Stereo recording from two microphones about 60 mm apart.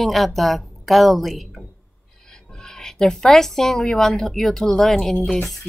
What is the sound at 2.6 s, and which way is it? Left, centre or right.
A woman's voice, centre.